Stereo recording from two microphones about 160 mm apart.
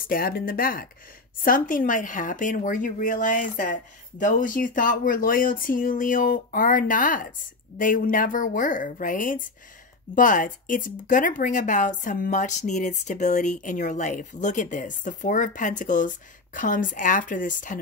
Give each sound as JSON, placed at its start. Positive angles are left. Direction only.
{"t": 0.1, "sound": "speech", "side_deg": 65}